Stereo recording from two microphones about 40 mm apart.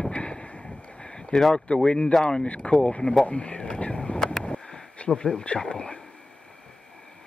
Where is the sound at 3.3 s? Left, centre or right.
Left.